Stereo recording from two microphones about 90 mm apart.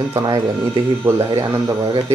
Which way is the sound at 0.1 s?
45° right (ahead or behind).